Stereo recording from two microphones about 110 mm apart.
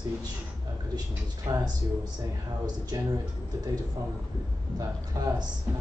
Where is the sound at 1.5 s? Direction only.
45° right (ahead or behind).